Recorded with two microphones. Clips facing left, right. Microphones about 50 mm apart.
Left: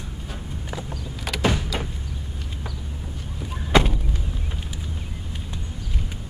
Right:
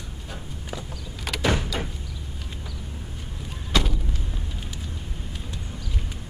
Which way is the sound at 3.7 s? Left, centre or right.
Left.